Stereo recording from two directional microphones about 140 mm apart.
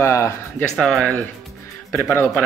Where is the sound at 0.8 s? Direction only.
5° left (ahead or behind).